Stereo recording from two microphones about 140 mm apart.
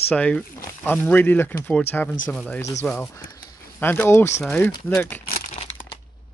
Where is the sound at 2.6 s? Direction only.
20° left (ahead or behind).